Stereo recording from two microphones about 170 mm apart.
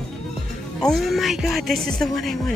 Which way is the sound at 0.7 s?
Centre (ahead or behind).